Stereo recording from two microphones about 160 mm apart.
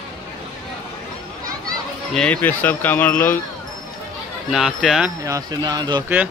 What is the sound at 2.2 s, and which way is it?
Speech, 10° left (ahead or behind).